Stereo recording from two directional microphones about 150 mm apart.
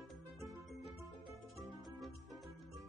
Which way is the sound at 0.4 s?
Centre (ahead or behind).